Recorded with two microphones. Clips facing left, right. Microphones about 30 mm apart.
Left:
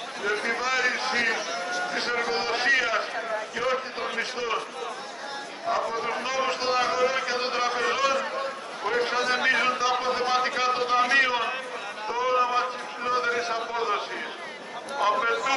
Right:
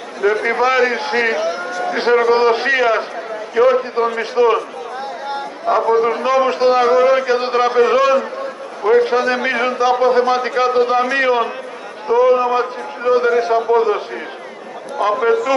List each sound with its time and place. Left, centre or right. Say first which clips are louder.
0.2 s a man's voice: right 12 dB; right
5.7 s a man's voice: right 13 dB; right
6.2 s a man's voice: right 13 dB; centre